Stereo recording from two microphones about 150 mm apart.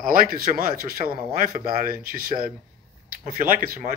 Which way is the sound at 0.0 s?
70° right (ahead or behind).